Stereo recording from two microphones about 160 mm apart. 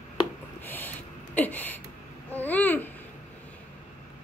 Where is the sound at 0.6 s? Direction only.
10° left (ahead or behind).